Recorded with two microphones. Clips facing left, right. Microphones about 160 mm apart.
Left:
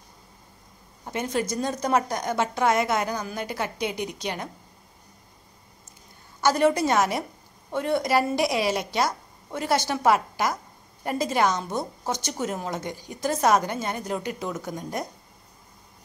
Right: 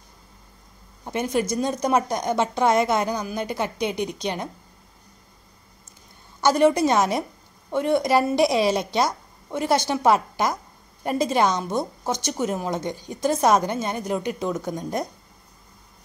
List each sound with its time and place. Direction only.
1.0 s a woman's voice: 20° right (ahead or behind)
6.4 s a woman's voice: 20° right (ahead or behind)